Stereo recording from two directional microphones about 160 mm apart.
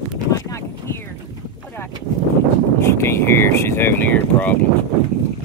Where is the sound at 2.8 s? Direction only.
15° left (ahead or behind).